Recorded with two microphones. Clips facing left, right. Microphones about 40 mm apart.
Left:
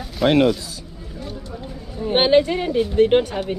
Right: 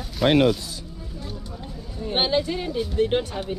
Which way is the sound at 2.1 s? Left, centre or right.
Left.